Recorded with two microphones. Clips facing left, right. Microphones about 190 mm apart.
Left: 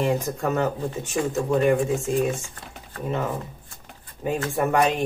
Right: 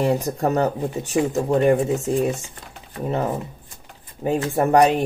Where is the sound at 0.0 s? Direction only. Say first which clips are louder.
Right 3 dB; 35° right (ahead or behind).